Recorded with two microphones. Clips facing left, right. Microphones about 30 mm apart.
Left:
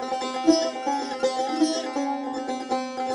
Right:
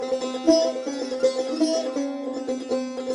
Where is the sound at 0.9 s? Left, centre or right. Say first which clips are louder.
Right 3 dB; left.